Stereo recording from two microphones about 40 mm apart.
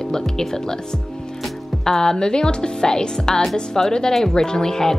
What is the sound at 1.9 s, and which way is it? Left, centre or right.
Speech, centre.